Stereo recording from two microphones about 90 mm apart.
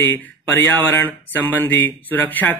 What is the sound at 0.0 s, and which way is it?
Speech, 25° left (ahead or behind).